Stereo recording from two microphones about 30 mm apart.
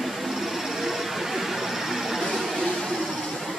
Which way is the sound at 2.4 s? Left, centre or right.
Centre.